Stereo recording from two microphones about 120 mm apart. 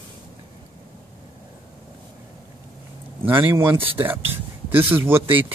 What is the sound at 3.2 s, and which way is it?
Speech, 15° right (ahead or behind).